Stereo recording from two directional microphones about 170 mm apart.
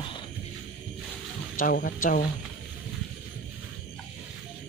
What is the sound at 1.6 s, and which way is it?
Speech, 55° left (ahead or behind).